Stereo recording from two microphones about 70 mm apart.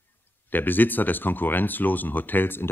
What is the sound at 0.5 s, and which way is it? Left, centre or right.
Speech, left.